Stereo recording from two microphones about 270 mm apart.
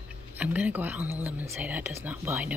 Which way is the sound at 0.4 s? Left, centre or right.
Centre.